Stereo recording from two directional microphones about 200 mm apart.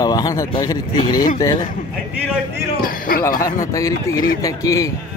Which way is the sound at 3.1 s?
45° left (ahead or behind).